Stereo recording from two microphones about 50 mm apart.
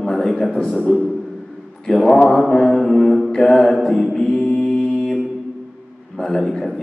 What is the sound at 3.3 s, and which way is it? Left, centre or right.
Speech, centre.